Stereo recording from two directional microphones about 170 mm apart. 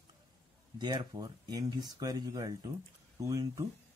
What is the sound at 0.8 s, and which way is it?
Speech, 25° right (ahead or behind).